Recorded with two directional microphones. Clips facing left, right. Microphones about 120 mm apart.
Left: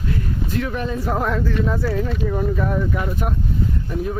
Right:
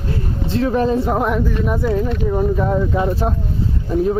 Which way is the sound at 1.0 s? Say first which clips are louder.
Right 4 dB; 20° right (ahead or behind).